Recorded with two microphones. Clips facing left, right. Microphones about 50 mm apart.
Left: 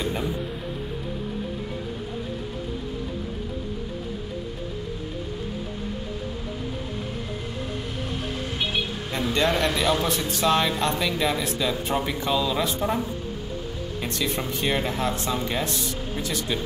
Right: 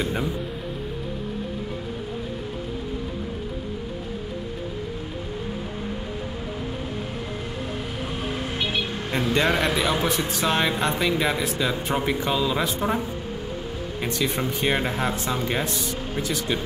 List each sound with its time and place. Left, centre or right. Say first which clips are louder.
9.1 s a sound: right 1 dB; centre
9.5 s speech: even; centre
14.2 s speech: right 2 dB; centre